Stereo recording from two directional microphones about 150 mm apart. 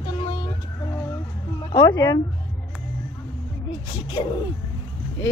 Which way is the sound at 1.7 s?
25° left (ahead or behind).